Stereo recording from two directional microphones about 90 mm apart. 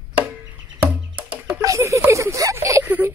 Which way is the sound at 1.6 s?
35° right (ahead or behind).